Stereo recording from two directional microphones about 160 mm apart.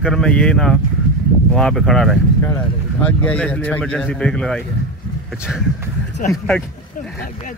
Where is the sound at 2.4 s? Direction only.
15° left (ahead or behind).